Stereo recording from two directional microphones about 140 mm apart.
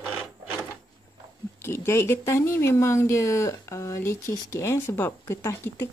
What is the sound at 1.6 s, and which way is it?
Speech, 20° left (ahead or behind).